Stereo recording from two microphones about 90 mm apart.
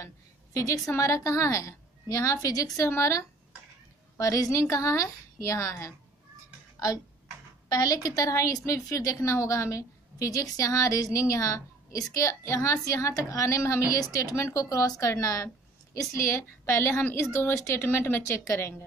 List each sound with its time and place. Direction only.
0.0 s a sound: 35° left (ahead or behind)
0.9 s a woman's voice: 35° left (ahead or behind)
7.7 s a woman's voice: 45° left (ahead or behind)